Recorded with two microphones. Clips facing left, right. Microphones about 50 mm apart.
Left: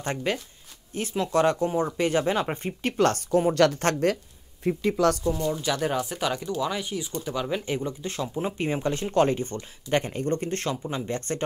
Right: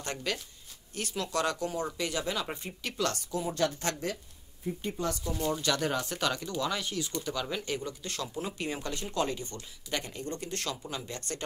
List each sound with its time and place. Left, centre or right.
0.0 s speech: left
3.5 s speech: left
4.6 s speech: left
5.3 s speech: centre; by 11.4 s left